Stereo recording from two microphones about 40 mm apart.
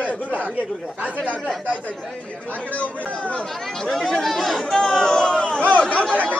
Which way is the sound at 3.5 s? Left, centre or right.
Centre.